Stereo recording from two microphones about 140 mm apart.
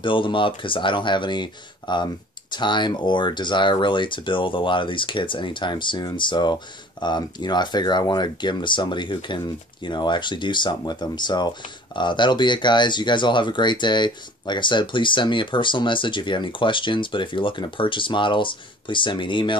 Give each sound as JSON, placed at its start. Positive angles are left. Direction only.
{"t": 0.0, "sound": "speech", "side_deg": 35}